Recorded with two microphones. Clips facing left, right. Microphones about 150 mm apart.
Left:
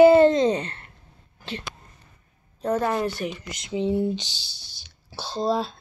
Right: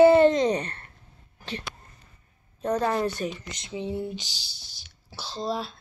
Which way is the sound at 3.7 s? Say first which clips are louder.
Left 7 dB; 20° left (ahead or behind).